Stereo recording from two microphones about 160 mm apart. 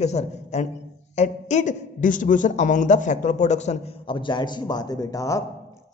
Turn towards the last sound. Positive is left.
turn(degrees=20)  # may be behind; listen again after turning